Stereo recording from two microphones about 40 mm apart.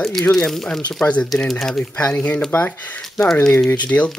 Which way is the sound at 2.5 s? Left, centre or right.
Left.